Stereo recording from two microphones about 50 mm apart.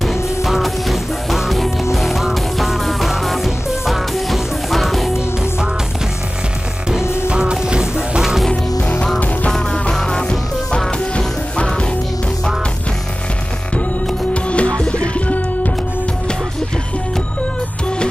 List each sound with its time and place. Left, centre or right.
0.0 s music: centre
7.2 s music: right
9.5 s music: centre
14.3 s music: left